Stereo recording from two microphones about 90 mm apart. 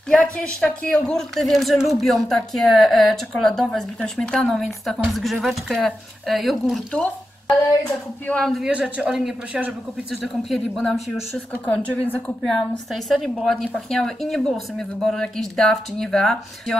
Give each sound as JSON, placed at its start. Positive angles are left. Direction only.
{"t": 0.1, "sound": "speech", "side_deg": 10}
{"t": 6.9, "sound": "speech", "side_deg": 10}
{"t": 8.5, "sound": "speech", "side_deg": -5}
{"t": 10.8, "sound": "speech", "side_deg": 5}
{"t": 11.5, "sound": "a woman's voice", "side_deg": 15}
{"t": 12.4, "sound": "speech", "side_deg": 5}